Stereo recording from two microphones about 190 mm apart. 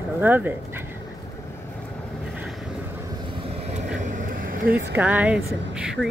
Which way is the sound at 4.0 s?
40° right (ahead or behind).